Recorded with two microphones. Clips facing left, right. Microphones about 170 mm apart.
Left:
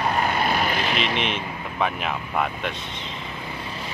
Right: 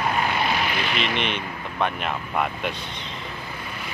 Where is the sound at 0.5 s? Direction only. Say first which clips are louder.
Left 2 dB; 40° left (ahead or behind).